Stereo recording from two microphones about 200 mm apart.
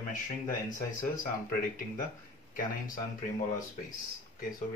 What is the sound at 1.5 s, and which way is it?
Speech, 45° left (ahead or behind).